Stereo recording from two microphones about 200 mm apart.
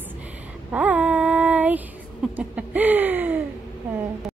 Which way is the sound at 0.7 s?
5° right (ahead or behind).